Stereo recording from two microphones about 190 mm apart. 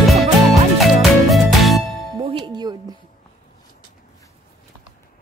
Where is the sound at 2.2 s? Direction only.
25° right (ahead or behind).